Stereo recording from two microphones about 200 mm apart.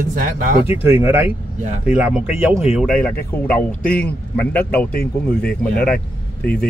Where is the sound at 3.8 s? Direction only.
45° left (ahead or behind).